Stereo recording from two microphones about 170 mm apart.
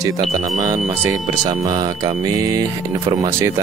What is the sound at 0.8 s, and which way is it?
Speech, 15° right (ahead or behind).